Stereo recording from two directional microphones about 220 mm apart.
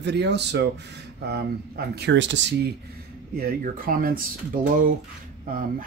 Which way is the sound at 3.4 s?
40° right (ahead or behind).